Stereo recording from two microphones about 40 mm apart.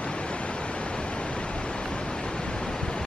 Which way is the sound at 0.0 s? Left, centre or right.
Left.